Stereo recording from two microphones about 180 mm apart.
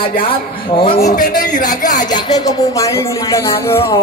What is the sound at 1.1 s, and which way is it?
Speech, 45° left (ahead or behind).